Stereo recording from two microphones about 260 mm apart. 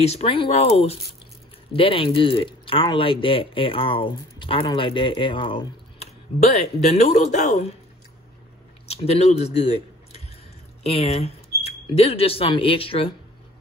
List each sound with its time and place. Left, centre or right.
0.0 s speech: left
8.8 s speech: left